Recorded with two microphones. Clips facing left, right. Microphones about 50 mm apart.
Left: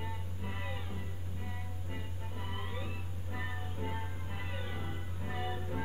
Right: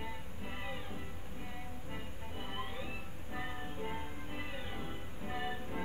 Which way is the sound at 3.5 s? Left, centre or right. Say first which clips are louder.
Even; right.